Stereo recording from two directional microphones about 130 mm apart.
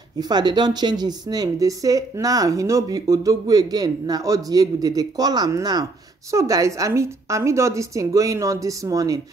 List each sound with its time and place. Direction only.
0.2 s a woman's voice: 35° right (ahead or behind)